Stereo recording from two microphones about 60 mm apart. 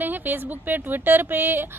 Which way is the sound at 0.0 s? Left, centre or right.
Right.